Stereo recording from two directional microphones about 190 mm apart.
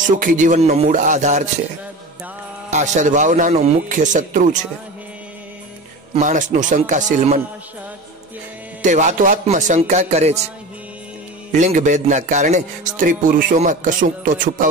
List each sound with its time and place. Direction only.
0.0 s a man's voice: 45° right (ahead or behind)
2.7 s a man's voice: 40° right (ahead or behind)
6.1 s a man's voice: 40° right (ahead or behind)
8.8 s a man's voice: 40° right (ahead or behind)
11.5 s a man's voice: 40° right (ahead or behind)